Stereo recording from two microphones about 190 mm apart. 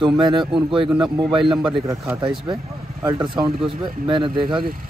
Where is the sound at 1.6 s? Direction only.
20° right (ahead or behind).